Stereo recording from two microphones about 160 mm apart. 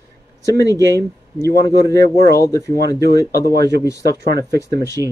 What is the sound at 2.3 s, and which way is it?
Speech, 20° left (ahead or behind).